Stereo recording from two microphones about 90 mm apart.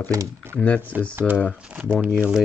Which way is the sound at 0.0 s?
40° right (ahead or behind).